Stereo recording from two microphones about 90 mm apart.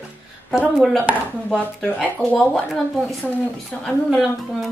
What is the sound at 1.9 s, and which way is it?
Speech, 10° left (ahead or behind).